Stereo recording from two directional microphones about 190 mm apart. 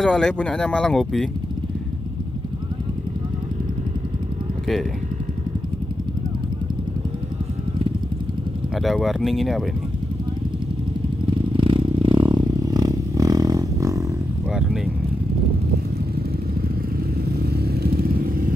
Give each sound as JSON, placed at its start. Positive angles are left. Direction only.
{"t": 0.0, "sound": "speech", "side_deg": 5}
{"t": 8.8, "sound": "speech", "side_deg": 0}
{"t": 11.2, "sound": "vehicle", "side_deg": -25}
{"t": 17.5, "sound": "motorcycle", "side_deg": -55}